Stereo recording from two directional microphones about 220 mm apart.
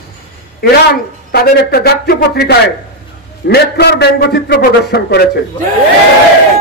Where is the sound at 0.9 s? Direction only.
45° left (ahead or behind).